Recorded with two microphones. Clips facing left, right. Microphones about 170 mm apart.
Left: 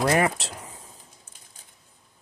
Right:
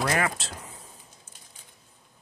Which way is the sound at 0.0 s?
25° left (ahead or behind).